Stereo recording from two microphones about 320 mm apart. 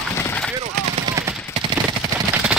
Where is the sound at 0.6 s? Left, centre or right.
Centre.